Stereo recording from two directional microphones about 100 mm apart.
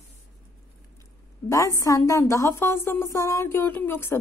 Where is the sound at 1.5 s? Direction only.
30° left (ahead or behind).